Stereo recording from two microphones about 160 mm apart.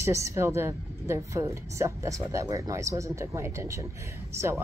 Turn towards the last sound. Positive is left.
turn(degrees=-15)  # may be behind; listen again after turning